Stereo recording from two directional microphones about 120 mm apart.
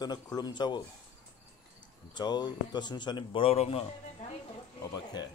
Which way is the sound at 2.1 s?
35° left (ahead or behind).